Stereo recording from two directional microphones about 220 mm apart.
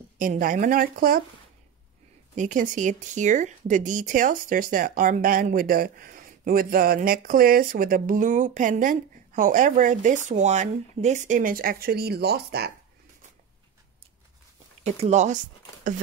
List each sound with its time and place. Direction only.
0.2 s speech: 40° right (ahead or behind)
2.3 s speech: 35° right (ahead or behind)
14.8 s speech: 30° right (ahead or behind)